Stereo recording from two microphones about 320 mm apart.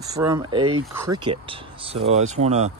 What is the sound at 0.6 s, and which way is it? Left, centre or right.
Speech, right.